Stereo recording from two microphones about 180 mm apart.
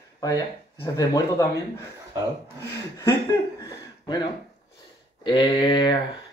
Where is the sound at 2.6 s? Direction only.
15° left (ahead or behind).